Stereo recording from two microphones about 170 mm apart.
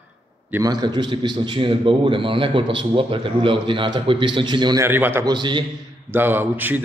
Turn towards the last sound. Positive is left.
turn(degrees=-10)  # may be behind; listen again after turning